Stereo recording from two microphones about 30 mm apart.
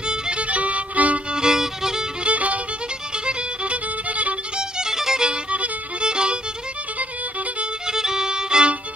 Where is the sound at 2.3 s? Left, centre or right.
Right.